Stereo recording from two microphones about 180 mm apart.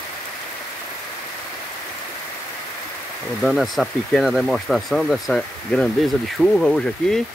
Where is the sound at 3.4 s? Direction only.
Centre (ahead or behind).